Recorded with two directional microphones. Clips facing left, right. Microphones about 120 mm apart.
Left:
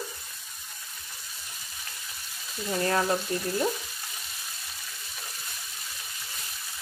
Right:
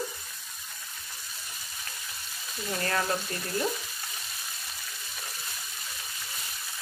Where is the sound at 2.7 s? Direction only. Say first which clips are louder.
Left 4 dB; 15° left (ahead or behind).